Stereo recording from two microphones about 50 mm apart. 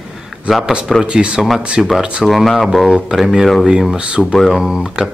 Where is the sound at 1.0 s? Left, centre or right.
Right.